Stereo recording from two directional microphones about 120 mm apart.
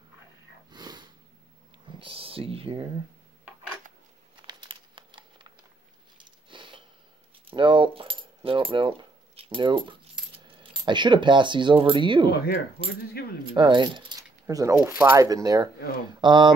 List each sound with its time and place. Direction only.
0.7 s sniff: 35° right (ahead or behind)
1.9 s a sound: 50° right (ahead or behind)
4.4 s crumpling: 45° right (ahead or behind)
6.1 s a sound: 40° right (ahead or behind)
7.4 s keys jangling: 45° right (ahead or behind)
8.5 s speech: 45° right (ahead or behind)
13.6 s speech: 40° right (ahead or behind)
14.4 s mechanisms: 25° right (ahead or behind)
15.1 s speech: 30° right (ahead or behind)